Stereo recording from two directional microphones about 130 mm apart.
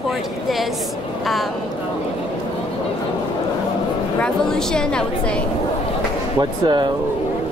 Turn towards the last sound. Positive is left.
turn(degrees=-35)  # may be behind; listen again after turning